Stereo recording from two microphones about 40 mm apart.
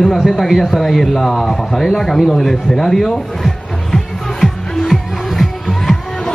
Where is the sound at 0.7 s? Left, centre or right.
Centre.